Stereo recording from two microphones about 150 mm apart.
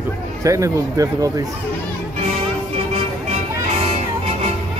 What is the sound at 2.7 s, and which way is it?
Music, 40° right (ahead or behind).